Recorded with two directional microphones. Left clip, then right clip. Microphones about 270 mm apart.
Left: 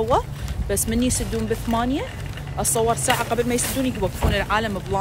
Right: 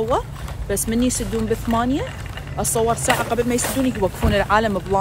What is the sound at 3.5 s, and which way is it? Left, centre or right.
Speech, centre.